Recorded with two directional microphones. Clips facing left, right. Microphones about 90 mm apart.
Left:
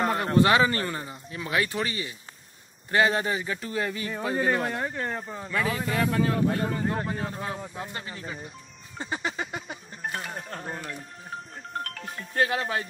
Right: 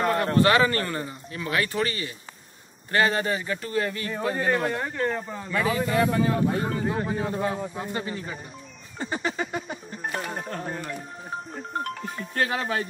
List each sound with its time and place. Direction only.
0.0 s speech: 15° left (ahead or behind)
8.9 s speech: 10° left (ahead or behind)
11.5 s speech: 20° right (ahead or behind)
12.4 s speech: 15° left (ahead or behind)